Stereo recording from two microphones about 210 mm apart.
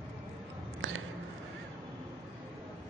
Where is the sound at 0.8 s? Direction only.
65° right (ahead or behind).